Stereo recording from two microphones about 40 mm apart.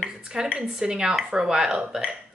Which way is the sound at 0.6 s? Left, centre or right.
Centre.